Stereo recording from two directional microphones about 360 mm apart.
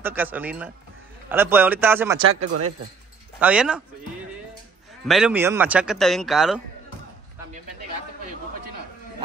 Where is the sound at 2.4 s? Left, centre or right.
Right.